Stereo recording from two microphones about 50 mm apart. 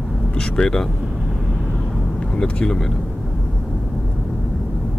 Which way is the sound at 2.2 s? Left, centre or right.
Centre.